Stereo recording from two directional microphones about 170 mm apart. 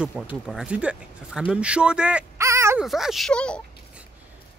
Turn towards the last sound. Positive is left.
turn(degrees=5)  # may be behind; listen again after turning